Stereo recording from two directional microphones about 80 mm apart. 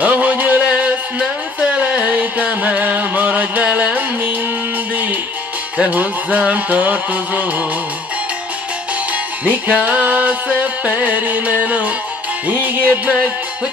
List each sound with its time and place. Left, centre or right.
0.0 s music: centre
5.8 s music: centre
9.1 s music: centre